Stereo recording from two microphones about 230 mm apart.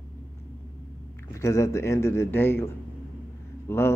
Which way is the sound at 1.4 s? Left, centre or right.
Centre.